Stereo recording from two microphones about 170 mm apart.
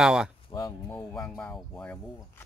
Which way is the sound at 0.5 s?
20° left (ahead or behind).